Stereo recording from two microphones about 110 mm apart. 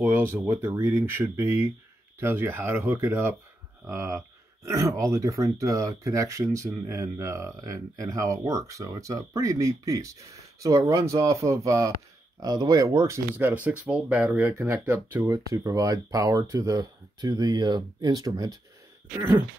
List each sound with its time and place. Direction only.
0.0 s speech: 20° right (ahead or behind)
14.5 s speech: 25° right (ahead or behind)
19.1 s speech: 20° right (ahead or behind)